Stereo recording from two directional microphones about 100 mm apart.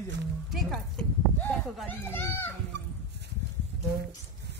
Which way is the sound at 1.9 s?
20° left (ahead or behind).